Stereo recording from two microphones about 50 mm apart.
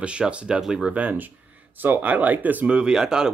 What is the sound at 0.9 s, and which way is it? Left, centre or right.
Speech, right.